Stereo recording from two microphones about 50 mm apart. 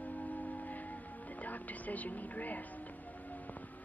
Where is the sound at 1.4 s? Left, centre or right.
Left.